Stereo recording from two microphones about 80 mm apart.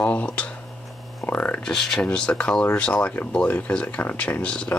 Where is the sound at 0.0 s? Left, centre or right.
Centre.